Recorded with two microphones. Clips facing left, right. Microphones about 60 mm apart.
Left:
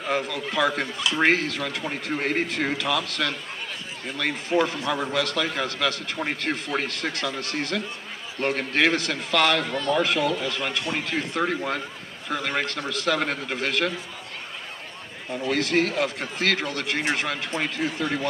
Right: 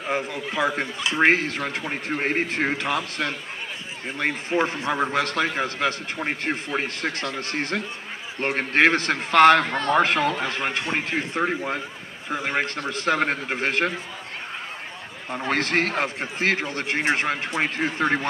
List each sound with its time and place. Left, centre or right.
0.0 s a man's voice: right
15.3 s a man's voice: right
16.2 s speech: right